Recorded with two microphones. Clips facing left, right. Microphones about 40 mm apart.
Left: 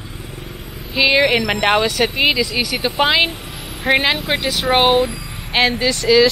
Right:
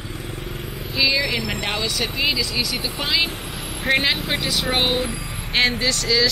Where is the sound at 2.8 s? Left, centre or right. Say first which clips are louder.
Left 10 dB; left.